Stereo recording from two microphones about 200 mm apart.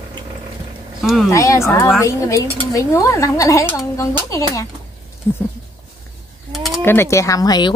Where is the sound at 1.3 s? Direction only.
15° left (ahead or behind).